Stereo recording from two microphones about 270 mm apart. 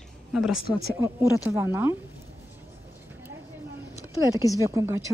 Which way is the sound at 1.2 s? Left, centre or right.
Centre.